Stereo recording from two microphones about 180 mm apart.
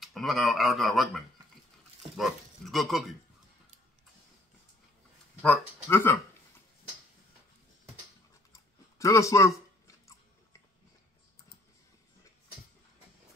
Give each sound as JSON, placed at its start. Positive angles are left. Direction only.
{"t": 0.0, "sound": "speech", "side_deg": 0}
{"t": 5.4, "sound": "speech", "side_deg": 10}
{"t": 8.5, "sound": "chewing", "side_deg": 15}